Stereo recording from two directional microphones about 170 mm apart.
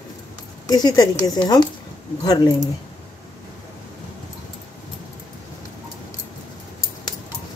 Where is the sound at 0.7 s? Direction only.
20° left (ahead or behind).